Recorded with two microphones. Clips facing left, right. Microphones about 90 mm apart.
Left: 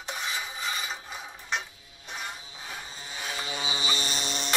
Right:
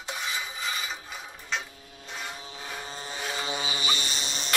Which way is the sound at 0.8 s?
20° left (ahead or behind).